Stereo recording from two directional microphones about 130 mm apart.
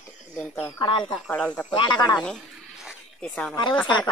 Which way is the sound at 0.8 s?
35° left (ahead or behind).